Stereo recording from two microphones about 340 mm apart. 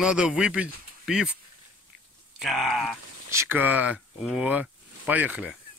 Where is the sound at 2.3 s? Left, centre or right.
Centre.